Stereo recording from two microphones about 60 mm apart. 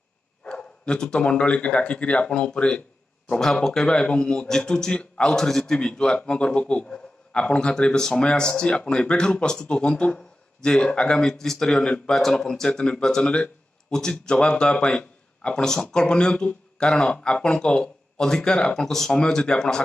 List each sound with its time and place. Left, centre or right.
0.4 s speech: centre
3.3 s a man's voice: centre